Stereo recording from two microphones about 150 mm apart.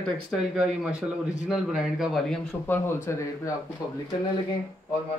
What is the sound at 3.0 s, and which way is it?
Speech, 20° left (ahead or behind).